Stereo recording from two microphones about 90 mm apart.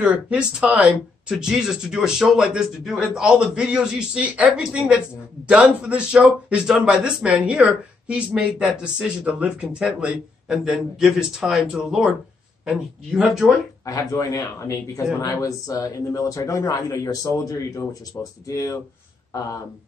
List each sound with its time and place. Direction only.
0.0 s a man's voice: 10° right (ahead or behind)
13.8 s a man's voice: 40° left (ahead or behind)